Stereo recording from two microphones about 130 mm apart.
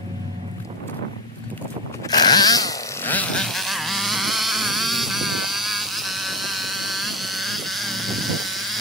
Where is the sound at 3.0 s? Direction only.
10° left (ahead or behind).